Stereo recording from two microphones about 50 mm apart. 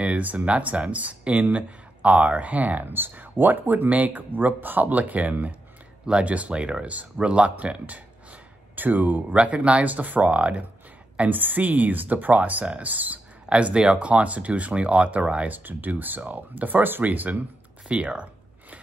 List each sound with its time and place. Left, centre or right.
0.0 s speech: right
9.4 s speech: right
11.1 s speech: right
13.5 s speech: right
15.5 s speech: right
17.8 s a sound: right